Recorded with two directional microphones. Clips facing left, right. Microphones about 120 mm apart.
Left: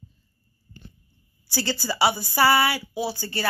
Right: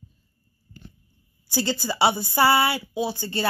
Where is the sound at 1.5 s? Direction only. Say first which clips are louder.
Right 2 dB; 20° right (ahead or behind).